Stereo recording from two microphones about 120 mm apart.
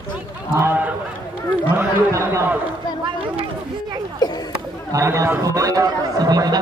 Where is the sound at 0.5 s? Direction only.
20° right (ahead or behind).